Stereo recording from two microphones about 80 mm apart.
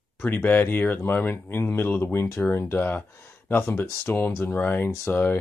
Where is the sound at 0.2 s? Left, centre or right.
Left.